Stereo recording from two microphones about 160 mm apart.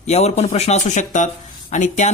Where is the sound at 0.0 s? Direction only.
45° left (ahead or behind).